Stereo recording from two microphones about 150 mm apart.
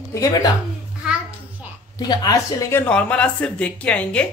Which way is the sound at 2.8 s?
10° left (ahead or behind).